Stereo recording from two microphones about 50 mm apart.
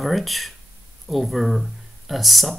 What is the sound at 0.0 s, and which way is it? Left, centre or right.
Speech, centre.